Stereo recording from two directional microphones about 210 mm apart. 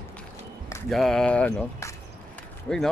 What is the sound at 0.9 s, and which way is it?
Speech, centre (ahead or behind).